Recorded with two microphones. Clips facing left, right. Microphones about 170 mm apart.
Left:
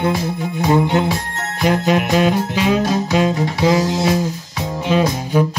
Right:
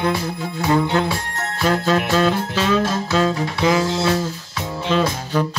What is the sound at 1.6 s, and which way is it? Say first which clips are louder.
Music: left 2 dB; 15° left (ahead or behind).